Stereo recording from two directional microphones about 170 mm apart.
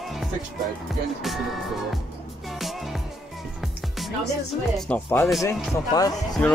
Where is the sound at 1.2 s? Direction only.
Centre (ahead or behind).